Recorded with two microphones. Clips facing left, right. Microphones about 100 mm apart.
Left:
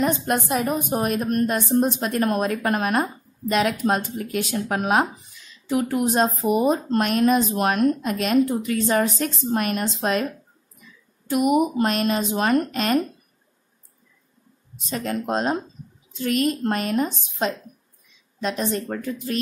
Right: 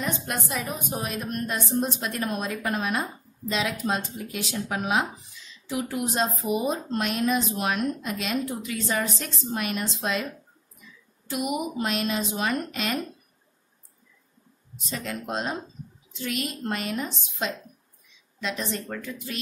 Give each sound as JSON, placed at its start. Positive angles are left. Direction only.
{"t": 0.0, "sound": "a woman's voice", "side_deg": 45}
{"t": 11.2, "sound": "a woman's voice", "side_deg": 50}
{"t": 14.9, "sound": "a woman's voice", "side_deg": 45}